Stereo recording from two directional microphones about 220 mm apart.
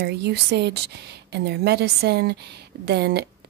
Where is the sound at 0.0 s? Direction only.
50° right (ahead or behind).